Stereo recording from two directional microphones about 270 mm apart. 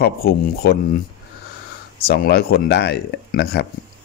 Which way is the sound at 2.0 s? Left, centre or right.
Left.